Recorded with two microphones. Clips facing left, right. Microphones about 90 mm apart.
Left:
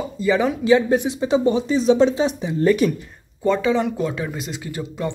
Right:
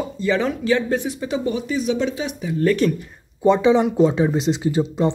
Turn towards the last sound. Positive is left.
turn(degrees=-20)  # may be behind; listen again after turning